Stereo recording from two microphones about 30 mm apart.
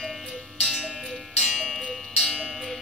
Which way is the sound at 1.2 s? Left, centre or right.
Centre.